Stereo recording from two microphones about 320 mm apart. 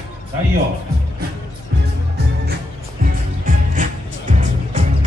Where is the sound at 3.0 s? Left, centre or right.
Right.